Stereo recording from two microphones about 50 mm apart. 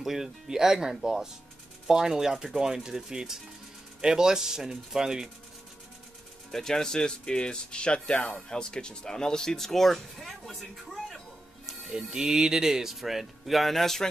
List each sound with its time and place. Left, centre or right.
0.0 s speech: centre
6.5 s speech: centre
11.6 s speech: centre